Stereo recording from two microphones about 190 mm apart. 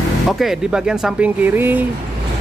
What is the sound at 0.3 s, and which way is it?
Speech, centre (ahead or behind).